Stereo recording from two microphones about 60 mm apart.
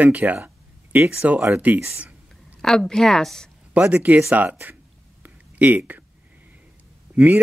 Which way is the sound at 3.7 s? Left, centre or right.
Right.